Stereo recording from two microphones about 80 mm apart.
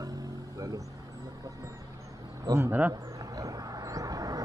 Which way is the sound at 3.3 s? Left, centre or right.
Right.